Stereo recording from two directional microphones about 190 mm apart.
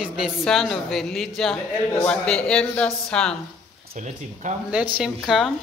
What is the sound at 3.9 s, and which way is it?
Speech, 40° right (ahead or behind).